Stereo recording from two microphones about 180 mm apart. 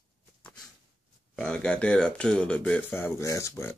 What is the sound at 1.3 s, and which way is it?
Speech, 5° left (ahead or behind).